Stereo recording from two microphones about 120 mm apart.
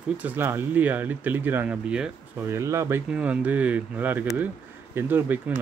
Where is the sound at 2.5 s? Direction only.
25° right (ahead or behind).